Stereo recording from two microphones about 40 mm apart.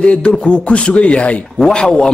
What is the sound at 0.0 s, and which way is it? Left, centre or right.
A man's voice, left.